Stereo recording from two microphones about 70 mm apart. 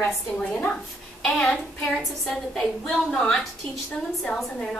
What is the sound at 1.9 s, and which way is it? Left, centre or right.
A woman's voice, centre.